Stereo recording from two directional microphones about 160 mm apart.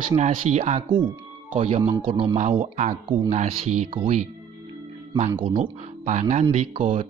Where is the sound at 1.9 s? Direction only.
30° right (ahead or behind).